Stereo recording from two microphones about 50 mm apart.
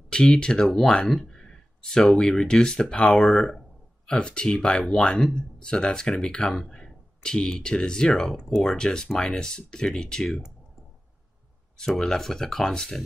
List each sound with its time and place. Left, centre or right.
0.1 s speech: centre
4.1 s speech: centre
11.8 s speech: centre